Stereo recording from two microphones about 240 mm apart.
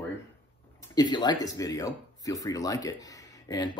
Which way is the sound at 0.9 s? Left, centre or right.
Centre.